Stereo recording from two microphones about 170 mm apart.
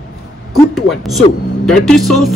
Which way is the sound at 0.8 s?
Centre (ahead or behind).